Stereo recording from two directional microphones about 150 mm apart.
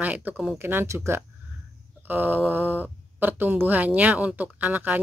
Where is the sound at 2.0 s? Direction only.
15° right (ahead or behind).